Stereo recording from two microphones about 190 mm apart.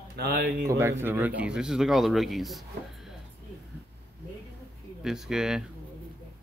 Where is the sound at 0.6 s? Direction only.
15° right (ahead or behind).